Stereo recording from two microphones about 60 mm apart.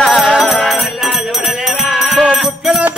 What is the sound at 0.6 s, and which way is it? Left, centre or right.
Music, centre.